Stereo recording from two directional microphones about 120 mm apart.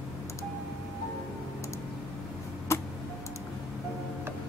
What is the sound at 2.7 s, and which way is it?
Tick-tock, 25° left (ahead or behind).